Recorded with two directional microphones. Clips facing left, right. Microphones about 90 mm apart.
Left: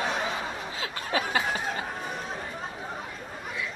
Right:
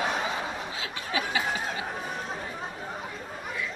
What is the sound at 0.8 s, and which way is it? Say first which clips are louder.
Snicker: left 3 dB; 45° left (ahead or behind).